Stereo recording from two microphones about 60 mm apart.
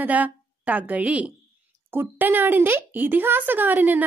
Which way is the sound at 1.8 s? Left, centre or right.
Right.